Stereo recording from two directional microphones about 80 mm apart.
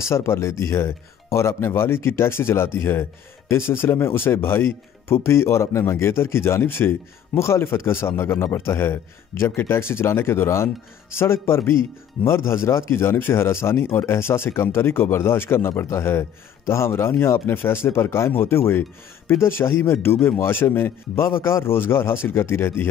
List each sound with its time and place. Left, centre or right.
0.1 s speech: left